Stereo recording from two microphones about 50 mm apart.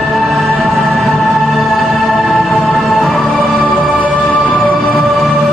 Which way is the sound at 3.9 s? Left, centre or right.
Left.